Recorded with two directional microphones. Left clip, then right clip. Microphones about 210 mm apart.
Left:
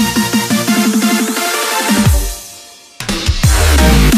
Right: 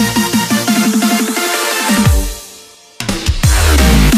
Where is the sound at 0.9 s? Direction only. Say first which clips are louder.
Even; centre (ahead or behind).